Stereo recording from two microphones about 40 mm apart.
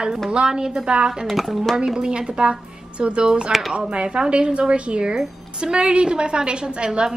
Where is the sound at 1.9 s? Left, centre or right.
Right.